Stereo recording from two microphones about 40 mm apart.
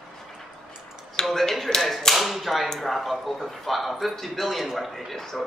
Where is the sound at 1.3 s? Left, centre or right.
Centre.